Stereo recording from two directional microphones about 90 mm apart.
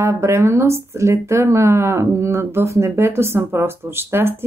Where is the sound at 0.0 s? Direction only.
30° right (ahead or behind).